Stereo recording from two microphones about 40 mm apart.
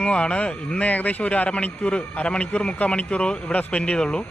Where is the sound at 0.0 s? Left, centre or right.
Left.